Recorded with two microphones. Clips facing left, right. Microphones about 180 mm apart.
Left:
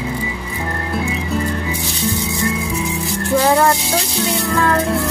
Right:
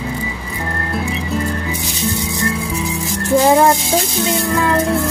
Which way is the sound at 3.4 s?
20° right (ahead or behind).